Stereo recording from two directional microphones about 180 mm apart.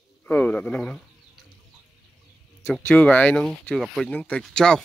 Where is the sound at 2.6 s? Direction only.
10° left (ahead or behind).